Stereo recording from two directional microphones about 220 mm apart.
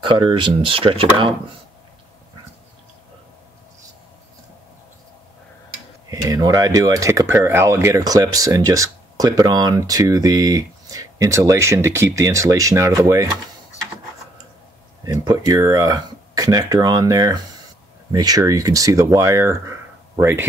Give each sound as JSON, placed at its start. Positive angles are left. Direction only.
{"t": 0.0, "sound": "speech", "side_deg": -20}
{"t": 6.0, "sound": "speech", "side_deg": -15}
{"t": 15.0, "sound": "speech", "side_deg": -15}